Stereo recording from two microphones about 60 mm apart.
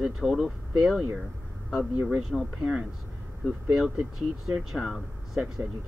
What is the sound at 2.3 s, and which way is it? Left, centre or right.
Speech, centre.